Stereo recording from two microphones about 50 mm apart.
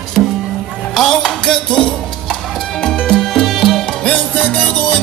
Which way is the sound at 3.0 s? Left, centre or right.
Centre.